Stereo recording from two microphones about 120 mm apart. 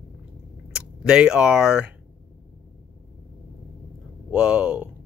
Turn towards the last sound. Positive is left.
turn(degrees=-10)  # may be behind; listen again after turning